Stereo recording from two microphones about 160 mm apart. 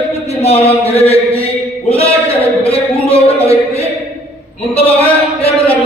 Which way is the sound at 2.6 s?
40° left (ahead or behind).